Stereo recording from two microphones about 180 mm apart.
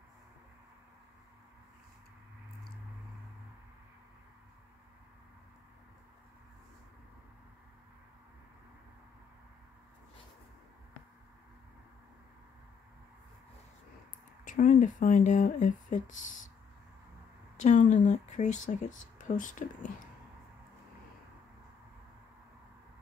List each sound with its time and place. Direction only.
14.4 s speech: 45° left (ahead or behind)
17.6 s speech: 45° left (ahead or behind)